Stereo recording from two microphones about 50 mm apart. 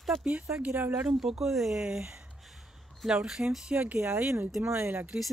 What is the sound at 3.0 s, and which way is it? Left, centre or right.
Speech, centre.